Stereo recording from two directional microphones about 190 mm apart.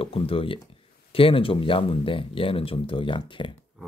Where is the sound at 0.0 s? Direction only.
30° left (ahead or behind).